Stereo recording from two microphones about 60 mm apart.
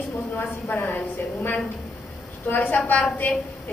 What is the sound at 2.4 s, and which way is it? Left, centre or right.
Speech, left.